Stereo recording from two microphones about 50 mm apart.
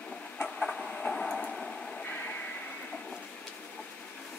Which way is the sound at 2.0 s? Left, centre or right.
Left.